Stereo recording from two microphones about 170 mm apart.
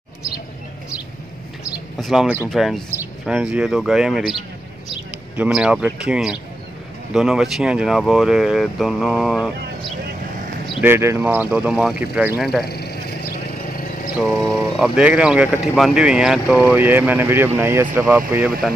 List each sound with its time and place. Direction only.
2.0 s speech: centre (ahead or behind)
10.8 s speech: 15° right (ahead or behind)
12.6 s a sound: 70° left (ahead or behind)
14.8 s speech: 5° right (ahead or behind)